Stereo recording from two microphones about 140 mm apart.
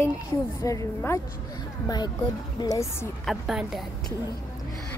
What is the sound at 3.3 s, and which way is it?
Speech, centre (ahead or behind).